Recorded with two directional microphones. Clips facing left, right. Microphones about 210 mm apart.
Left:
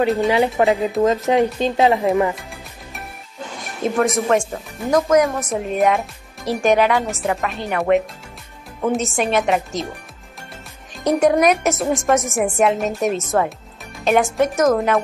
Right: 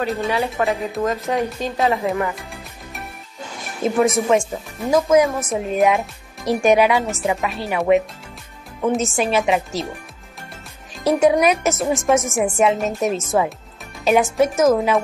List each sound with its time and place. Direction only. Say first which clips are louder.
0.3 s a woman's voice: left 5 dB; 20° left (ahead or behind)
3.8 s a woman's voice: right 1 dB; centre (ahead or behind)
11.1 s a woman's voice: even; centre (ahead or behind)